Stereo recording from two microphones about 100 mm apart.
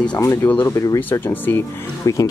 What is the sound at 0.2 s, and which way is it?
Speech, 30° left (ahead or behind).